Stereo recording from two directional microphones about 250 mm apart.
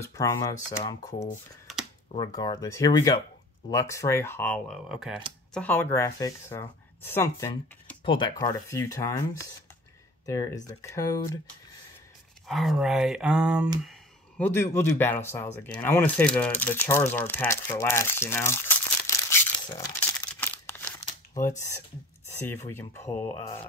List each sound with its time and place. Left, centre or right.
0.0 s speech: centre
1.7 s computer keyboard: centre
2.1 s speech: centre
12.4 s speech: centre
14.4 s speech: centre